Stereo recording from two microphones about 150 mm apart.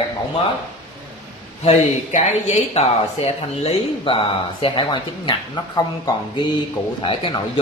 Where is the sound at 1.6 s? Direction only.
50° left (ahead or behind).